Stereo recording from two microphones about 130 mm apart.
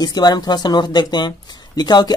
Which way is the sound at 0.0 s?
30° left (ahead or behind).